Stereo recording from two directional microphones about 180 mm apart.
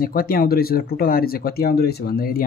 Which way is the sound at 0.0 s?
55° left (ahead or behind).